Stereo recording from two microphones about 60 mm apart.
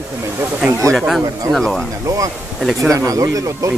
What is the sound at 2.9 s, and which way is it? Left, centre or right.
Speech, right.